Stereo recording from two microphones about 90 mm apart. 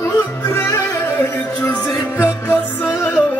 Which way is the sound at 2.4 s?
25° left (ahead or behind).